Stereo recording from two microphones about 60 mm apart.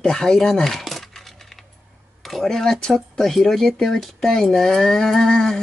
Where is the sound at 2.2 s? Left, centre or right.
Centre.